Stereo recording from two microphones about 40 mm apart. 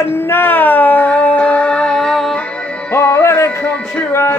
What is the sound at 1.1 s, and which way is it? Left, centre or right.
Music, left.